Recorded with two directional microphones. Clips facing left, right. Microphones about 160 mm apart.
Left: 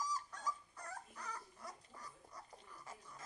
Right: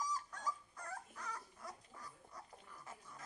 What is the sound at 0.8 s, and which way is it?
Dog, 10° left (ahead or behind).